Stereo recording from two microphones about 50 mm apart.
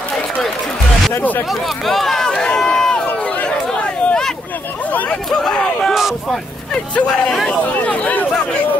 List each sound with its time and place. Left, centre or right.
1.5 s speech: centre
3.4 s a sound: centre
5.1 s speech: centre
6.7 s speech: left